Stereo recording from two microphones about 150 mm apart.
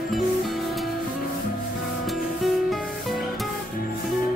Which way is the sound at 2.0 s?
Centre (ahead or behind).